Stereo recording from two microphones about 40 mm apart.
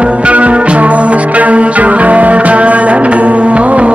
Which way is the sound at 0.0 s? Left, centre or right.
Right.